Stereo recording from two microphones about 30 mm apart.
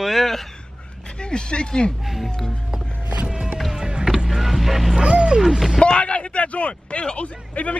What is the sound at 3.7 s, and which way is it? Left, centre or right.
Vehicle, right.